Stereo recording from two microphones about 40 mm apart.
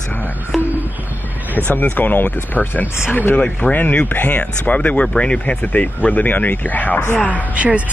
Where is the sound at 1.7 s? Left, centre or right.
Left.